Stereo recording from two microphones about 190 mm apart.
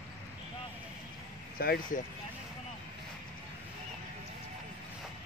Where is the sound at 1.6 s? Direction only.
55° left (ahead or behind).